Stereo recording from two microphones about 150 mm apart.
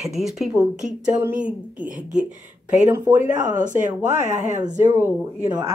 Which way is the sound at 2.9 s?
15° right (ahead or behind).